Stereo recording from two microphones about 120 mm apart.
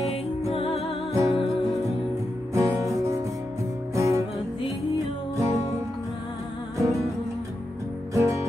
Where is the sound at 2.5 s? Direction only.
25° right (ahead or behind).